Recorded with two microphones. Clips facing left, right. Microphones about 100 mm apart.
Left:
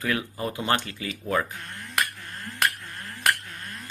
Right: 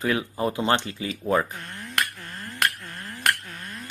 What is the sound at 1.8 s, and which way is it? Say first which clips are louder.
Finger snapping: even; centre (ahead or behind).